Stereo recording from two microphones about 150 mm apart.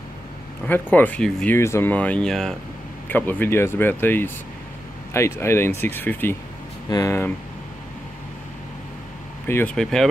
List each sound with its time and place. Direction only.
0.7 s speech: 10° left (ahead or behind)
9.5 s speech: 15° left (ahead or behind)
9.8 s speech: 5° left (ahead or behind)